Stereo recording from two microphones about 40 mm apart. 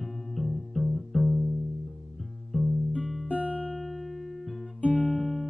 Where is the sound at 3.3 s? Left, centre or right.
Right.